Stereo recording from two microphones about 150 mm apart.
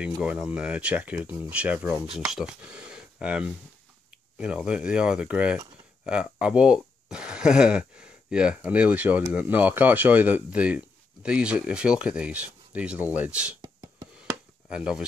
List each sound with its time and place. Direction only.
0.0 s speech: 5° right (ahead or behind)
13.6 s beatboxing: 25° right (ahead or behind)
14.7 s speech: 5° right (ahead or behind)